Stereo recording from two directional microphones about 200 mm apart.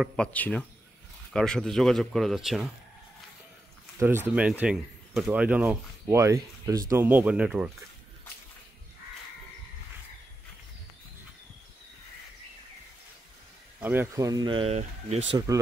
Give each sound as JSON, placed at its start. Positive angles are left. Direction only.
{"t": 0.0, "sound": "speech", "side_deg": 5}
{"t": 4.0, "sound": "speech", "side_deg": -10}
{"t": 13.7, "sound": "speech", "side_deg": -10}
{"t": 15.3, "sound": "speech", "side_deg": -15}